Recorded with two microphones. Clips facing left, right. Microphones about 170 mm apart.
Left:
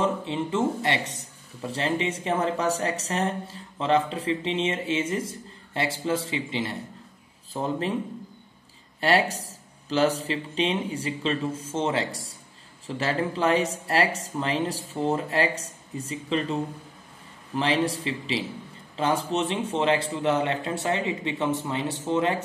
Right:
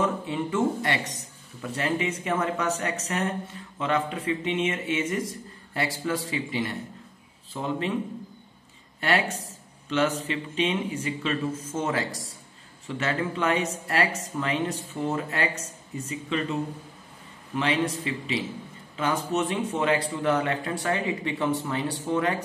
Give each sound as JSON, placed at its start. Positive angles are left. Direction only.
{"t": 0.0, "sound": "speech", "side_deg": 25}
{"t": 7.5, "sound": "speech", "side_deg": 40}
{"t": 9.0, "sound": "speech", "side_deg": 35}
{"t": 17.6, "sound": "speech", "side_deg": 30}